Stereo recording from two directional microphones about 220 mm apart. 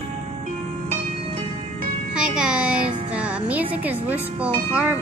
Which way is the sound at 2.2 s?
5° right (ahead or behind).